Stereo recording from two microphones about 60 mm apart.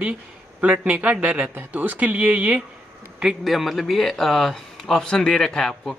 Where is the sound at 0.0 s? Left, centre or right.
Right.